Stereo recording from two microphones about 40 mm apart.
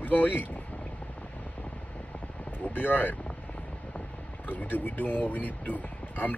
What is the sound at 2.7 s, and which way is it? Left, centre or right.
Speech, left.